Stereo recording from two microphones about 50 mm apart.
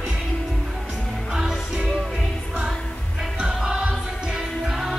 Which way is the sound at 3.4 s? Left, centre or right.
Centre.